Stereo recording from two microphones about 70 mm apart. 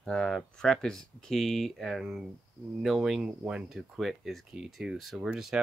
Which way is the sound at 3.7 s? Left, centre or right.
Centre.